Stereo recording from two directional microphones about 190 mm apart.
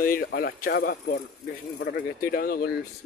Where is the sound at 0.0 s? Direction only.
50° left (ahead or behind).